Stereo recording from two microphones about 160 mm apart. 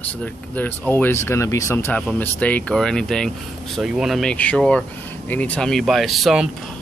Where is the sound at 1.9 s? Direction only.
10° left (ahead or behind).